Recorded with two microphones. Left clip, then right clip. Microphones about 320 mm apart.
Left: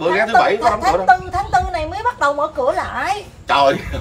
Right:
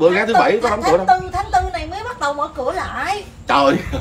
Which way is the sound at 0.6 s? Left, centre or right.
Left.